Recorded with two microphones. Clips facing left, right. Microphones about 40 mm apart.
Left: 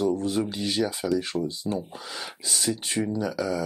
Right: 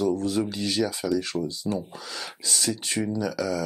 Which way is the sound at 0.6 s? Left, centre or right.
Centre.